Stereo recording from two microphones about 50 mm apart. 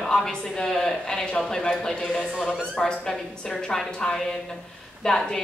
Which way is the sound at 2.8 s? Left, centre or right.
Centre.